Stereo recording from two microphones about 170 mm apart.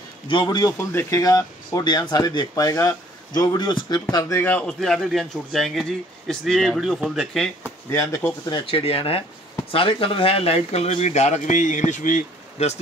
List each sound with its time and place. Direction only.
0.3 s a man's voice: 25° left (ahead or behind); by 7.5 s centre (ahead or behind)
7.9 s speech: 15° left (ahead or behind)
8.6 s speech: 35° left (ahead or behind)